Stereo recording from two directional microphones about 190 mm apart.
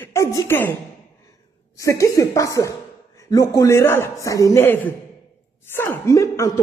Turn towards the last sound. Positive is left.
turn(degrees=15)  # may be behind; listen again after turning